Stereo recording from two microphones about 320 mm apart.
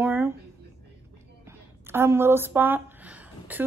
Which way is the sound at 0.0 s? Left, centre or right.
Centre.